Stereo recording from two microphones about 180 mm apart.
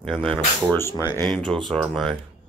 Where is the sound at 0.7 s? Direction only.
15° left (ahead or behind).